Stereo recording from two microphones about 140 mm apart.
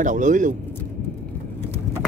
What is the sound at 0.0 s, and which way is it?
Speech, 65° right (ahead or behind).